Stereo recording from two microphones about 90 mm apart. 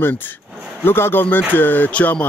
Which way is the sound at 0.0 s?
20° left (ahead or behind).